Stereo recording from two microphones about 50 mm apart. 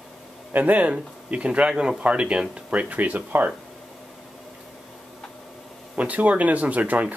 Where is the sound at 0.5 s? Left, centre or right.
Right.